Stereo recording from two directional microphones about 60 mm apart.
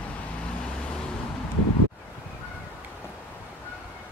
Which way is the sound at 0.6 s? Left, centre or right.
Centre.